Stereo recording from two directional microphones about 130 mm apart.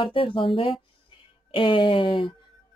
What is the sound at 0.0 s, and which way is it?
Speech, 40° left (ahead or behind).